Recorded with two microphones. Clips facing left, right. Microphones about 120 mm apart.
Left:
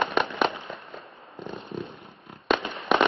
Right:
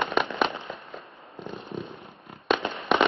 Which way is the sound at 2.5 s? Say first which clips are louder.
Left 1 dB; centre (ahead or behind).